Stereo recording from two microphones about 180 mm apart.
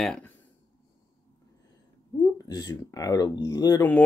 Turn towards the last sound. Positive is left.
turn(degrees=20)  # may be behind; listen again after turning